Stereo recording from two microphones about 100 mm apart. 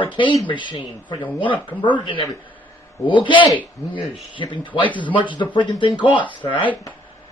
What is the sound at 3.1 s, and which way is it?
A man's voice, 55° left (ahead or behind).